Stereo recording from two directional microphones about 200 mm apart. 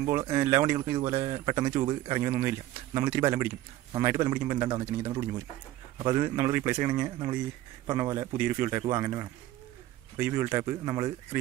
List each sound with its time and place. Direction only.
0.3 s a man's voice: 15° right (ahead or behind)
1.7 s speech: 25° right (ahead or behind)
2.1 s a man's voice: 10° right (ahead or behind)